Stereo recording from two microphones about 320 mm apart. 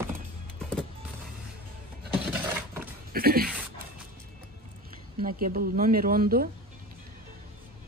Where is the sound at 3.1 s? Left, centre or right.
Right.